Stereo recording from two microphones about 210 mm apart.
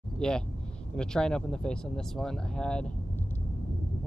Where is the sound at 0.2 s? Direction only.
5° left (ahead or behind).